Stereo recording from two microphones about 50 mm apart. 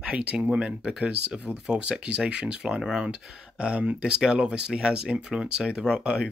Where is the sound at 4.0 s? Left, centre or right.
Centre.